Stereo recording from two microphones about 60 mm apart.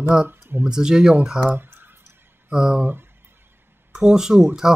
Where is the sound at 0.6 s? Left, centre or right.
Centre.